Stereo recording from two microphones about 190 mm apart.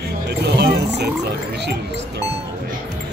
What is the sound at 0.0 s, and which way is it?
Music, 60° right (ahead or behind).